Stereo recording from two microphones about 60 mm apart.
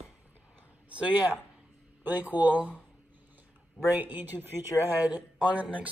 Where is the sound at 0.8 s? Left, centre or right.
Right.